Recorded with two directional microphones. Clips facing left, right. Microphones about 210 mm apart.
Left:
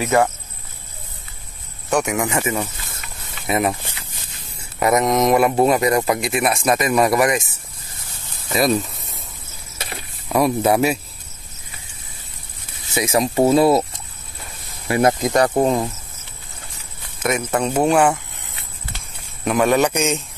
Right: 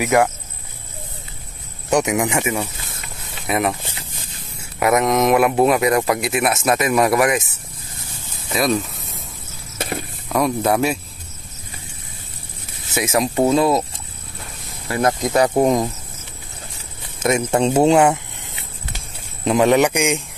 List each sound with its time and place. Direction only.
0.0 s speech: 15° right (ahead or behind)
1.9 s speech: 20° right (ahead or behind)
3.4 s speech: centre (ahead or behind)
4.7 s speech: centre (ahead or behind)
8.5 s speech: centre (ahead or behind)
9.8 s a sound: 50° right (ahead or behind)
10.2 s speech: 5° left (ahead or behind)
12.9 s speech: centre (ahead or behind)
14.9 s speech: 15° left (ahead or behind)
15.2 s speech: 10° right (ahead or behind)
17.2 s speech: 25° right (ahead or behind)
19.4 s speech: 20° right (ahead or behind)